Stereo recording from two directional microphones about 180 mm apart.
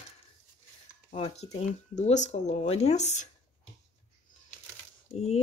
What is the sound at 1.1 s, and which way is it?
Speech, 35° left (ahead or behind).